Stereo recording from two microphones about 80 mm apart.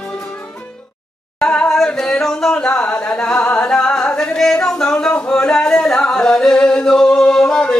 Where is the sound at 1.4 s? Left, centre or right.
Centre.